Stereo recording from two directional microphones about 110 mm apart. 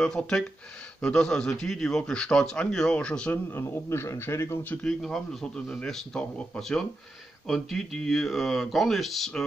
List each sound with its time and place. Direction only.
0.0 s a man's voice: 5° left (ahead or behind)
3.5 s speech: 25° left (ahead or behind)
4.8 s a man's voice: 5° left (ahead or behind)